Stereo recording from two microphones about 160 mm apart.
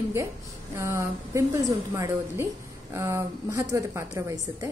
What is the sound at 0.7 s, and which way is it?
A woman's voice, 20° right (ahead or behind).